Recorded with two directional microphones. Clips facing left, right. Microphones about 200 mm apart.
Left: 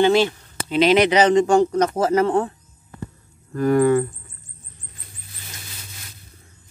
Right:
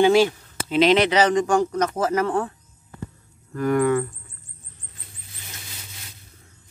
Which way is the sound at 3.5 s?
35° left (ahead or behind).